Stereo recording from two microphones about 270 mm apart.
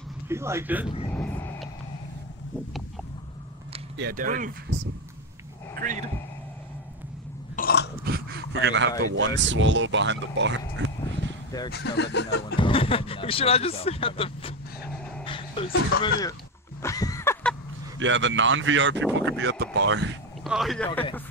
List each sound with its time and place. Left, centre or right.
0.3 s a man's voice: centre
1.1 s vehicle: centre
3.9 s speech: right
5.8 s speech: right
7.5 s burping: left
8.0 s a sound: right
9.1 s speech: right
11.7 s a sound: left
12.5 s speech: centre
16.8 s a sound: centre
17.9 s speech: right
20.4 s speech: centre